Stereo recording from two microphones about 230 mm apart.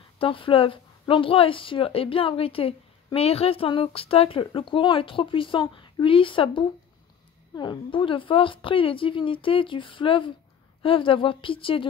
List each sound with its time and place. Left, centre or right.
0.2 s speech: left